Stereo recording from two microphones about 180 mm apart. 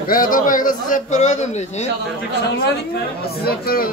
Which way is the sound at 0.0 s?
50° left (ahead or behind).